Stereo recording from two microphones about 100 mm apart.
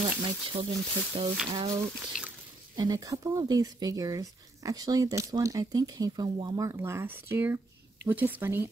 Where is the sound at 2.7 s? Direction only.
40° right (ahead or behind).